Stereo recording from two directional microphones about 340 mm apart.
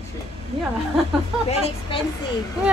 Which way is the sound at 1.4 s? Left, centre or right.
Centre.